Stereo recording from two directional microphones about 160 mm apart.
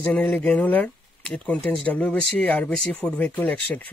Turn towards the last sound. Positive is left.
turn(degrees=5)  # may be behind; listen again after turning